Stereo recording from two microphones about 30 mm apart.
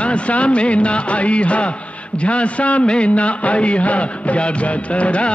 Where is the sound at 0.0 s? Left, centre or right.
Left.